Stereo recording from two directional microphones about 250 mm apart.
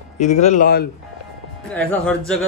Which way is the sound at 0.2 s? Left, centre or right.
Left.